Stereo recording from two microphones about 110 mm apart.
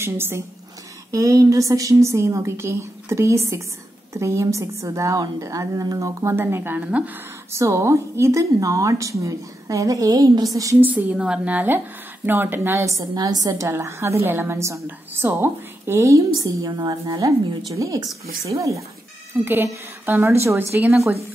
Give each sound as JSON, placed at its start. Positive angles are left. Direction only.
{"t": 0.0, "sound": "a woman's voice", "side_deg": -20}
{"t": 7.5, "sound": "a woman's voice", "side_deg": -25}
{"t": 10.8, "sound": "a woman's voice", "side_deg": -15}
{"t": 13.1, "sound": "a woman's voice", "side_deg": -35}
{"t": 19.4, "sound": "a woman's voice", "side_deg": -20}